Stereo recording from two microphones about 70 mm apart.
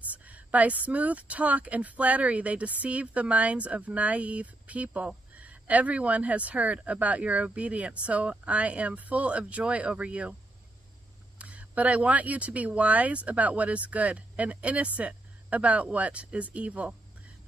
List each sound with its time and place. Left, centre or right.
0.1 s speech: right
11.3 s speech: centre